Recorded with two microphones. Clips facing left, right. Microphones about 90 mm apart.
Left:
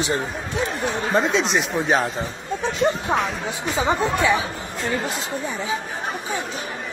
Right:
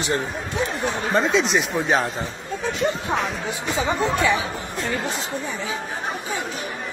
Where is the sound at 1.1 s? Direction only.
Centre (ahead or behind).